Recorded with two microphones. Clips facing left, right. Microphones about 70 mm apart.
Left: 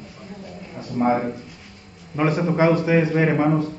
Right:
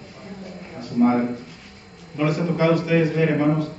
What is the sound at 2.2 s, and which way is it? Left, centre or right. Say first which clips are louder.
A man's voice: left 2 dB; left.